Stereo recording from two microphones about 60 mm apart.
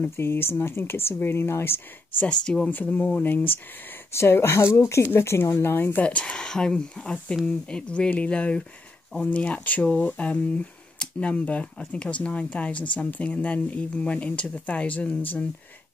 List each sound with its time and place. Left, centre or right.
0.1 s speech: left
2.2 s speech: centre
2.7 s speech: left
4.1 s speech: left
5.9 s speech: left